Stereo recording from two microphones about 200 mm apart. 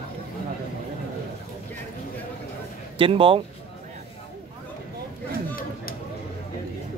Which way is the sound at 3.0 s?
25° right (ahead or behind).